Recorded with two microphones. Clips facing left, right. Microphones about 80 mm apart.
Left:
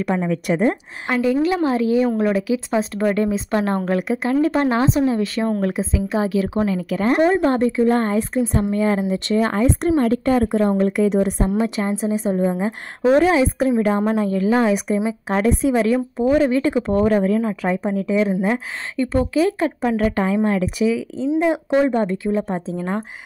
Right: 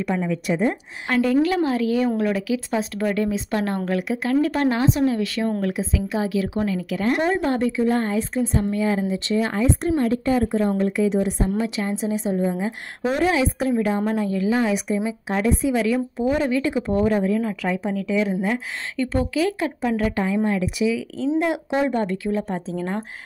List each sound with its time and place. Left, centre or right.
0.3 s a woman's voice: left
1.0 s a woman's voice: centre
1.5 s a woman's voice: left
11.8 s a woman's voice: left
16.8 s speech: left
17.4 s a woman's voice: left
21.5 s a woman's voice: left